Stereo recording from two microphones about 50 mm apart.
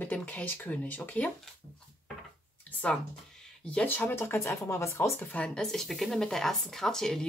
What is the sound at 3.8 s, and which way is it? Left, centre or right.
Speech, left.